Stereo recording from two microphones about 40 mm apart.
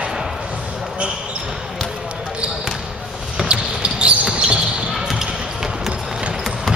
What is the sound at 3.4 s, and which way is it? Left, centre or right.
Basketball bounce, right.